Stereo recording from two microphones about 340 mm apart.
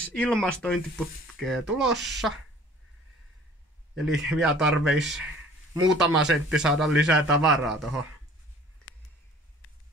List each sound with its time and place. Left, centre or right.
0.0 s a man's voice: centre
3.9 s a man's voice: centre
8.9 s a sound: left